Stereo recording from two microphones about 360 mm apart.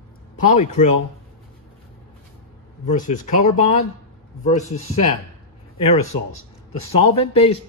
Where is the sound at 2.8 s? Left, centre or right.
Left.